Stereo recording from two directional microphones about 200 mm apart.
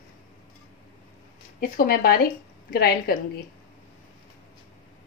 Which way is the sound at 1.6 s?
45° left (ahead or behind).